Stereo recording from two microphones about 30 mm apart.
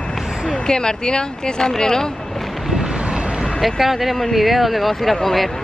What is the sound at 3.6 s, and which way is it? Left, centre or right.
Speech, centre.